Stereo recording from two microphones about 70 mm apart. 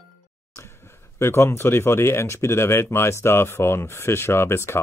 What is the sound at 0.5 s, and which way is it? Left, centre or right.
Speech, left.